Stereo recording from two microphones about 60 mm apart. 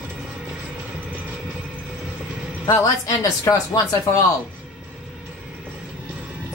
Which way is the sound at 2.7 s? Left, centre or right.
Left.